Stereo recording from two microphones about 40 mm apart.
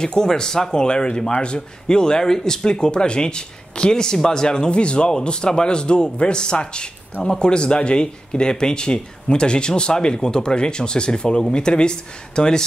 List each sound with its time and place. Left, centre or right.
0.0 s speech: centre